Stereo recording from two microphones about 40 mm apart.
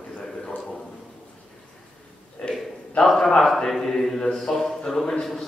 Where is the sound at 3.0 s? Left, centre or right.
Centre.